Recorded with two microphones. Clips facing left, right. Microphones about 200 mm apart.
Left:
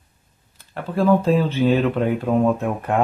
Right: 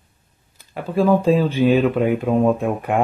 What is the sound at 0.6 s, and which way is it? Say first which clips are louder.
Speech: right 2 dB; 15° right (ahead or behind).